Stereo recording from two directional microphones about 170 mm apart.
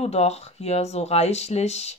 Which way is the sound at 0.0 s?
40° left (ahead or behind).